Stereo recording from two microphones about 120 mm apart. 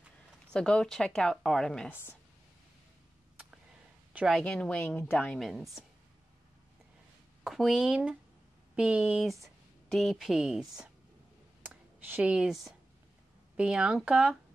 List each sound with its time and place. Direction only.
0.5 s speech: 5° left (ahead or behind)
1.9 s speech: 15° left (ahead or behind)
4.3 s speech: 5° left (ahead or behind)
5.4 s speech: centre (ahead or behind)
7.4 s speech: centre (ahead or behind)
11.6 s a sound: 15° right (ahead or behind)
13.6 s speech: 5° right (ahead or behind)